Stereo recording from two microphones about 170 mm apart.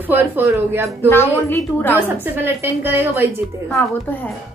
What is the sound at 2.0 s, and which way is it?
A woman's voice, 10° right (ahead or behind).